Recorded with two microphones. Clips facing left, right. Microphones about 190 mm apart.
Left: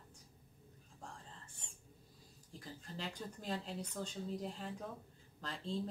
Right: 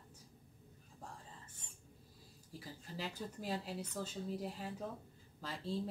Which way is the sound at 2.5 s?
5° right (ahead or behind).